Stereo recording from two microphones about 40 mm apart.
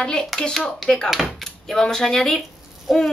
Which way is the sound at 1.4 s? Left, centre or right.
Centre.